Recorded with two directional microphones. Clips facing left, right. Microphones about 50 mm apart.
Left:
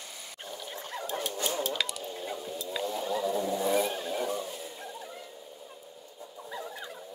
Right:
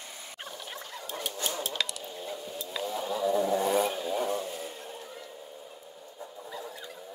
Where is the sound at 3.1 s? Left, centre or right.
Centre.